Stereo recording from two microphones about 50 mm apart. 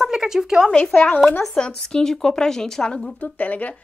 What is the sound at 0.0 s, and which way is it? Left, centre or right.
Speech, centre.